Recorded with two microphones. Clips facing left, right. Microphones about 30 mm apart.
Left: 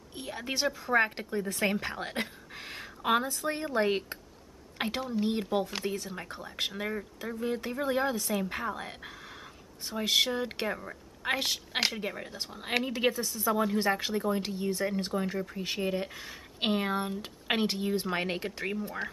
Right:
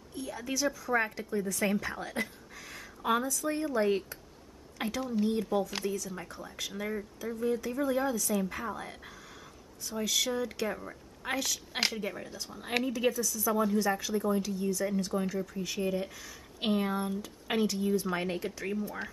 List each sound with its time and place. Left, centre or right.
0.1 s a woman's voice: left
6.8 s speech: left
7.8 s a woman's voice: left
11.9 s speech: left